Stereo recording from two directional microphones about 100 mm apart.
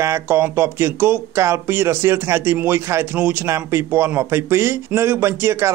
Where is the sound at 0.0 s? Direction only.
25° right (ahead or behind).